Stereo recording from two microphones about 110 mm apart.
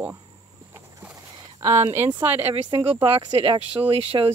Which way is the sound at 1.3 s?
30° right (ahead or behind).